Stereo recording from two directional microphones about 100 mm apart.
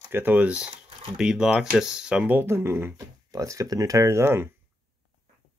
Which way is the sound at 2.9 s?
35° right (ahead or behind).